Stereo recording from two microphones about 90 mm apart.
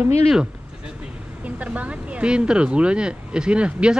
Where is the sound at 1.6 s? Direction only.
15° right (ahead or behind).